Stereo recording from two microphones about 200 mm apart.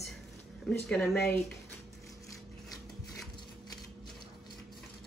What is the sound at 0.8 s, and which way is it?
Speech, 5° left (ahead or behind).